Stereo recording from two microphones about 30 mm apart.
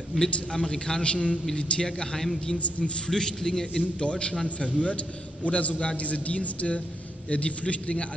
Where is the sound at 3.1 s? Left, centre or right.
Centre.